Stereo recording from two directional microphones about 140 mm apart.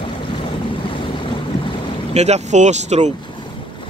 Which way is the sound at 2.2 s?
50° right (ahead or behind).